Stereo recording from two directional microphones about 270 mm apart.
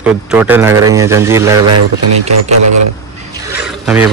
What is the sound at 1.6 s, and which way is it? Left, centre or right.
Speech, right.